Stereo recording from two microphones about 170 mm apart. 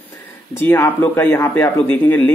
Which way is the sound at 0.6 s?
10° left (ahead or behind).